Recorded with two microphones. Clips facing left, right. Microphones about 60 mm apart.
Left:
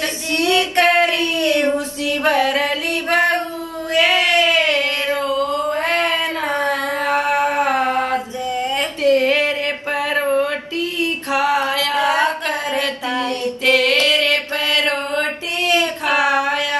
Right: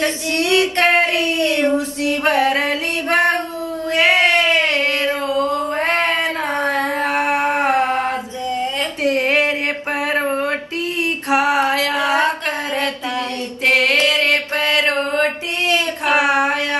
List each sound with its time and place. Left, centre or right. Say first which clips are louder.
0.0 s female singing: right 1 dB; right
2.0 s music: even; right
3.9 s a sound: right 1 dB; right
11.0 s female singing: right 2 dB; right
13.2 s mantra: left 1 dB; right
16.1 s child singing: right 2 dB; right